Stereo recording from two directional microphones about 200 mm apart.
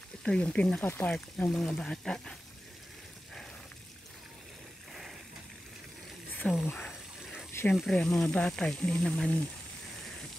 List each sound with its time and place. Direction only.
0.2 s speech: 5° left (ahead or behind)
6.4 s speech: 5° left (ahead or behind)